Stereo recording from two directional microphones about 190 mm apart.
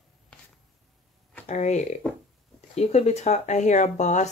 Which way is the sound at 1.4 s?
40° left (ahead or behind).